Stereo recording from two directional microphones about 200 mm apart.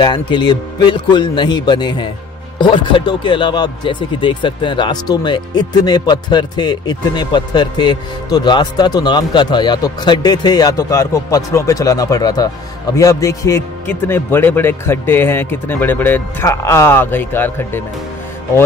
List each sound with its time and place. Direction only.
0.0 s a man's voice: 25° left (ahead or behind)